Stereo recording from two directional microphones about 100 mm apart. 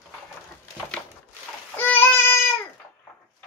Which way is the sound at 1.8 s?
20° left (ahead or behind).